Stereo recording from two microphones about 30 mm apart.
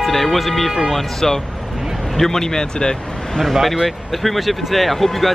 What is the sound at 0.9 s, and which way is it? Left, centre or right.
Speech, centre.